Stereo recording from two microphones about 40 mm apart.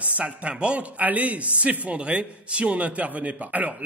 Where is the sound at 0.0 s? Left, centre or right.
Right.